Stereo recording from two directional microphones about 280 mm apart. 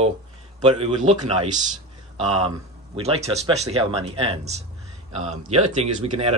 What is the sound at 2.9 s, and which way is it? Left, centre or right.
Speech, right.